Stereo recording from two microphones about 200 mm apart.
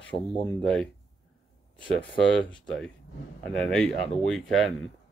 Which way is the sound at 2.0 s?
25° left (ahead or behind).